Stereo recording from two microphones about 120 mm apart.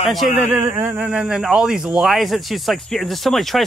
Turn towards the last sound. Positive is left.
turn(degrees=0)  # may be behind; listen again after turning